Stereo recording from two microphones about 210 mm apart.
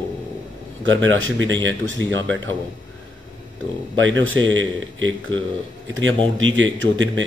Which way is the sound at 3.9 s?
65° right (ahead or behind).